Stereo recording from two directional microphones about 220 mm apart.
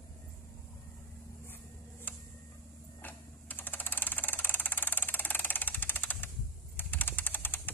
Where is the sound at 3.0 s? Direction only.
10° left (ahead or behind).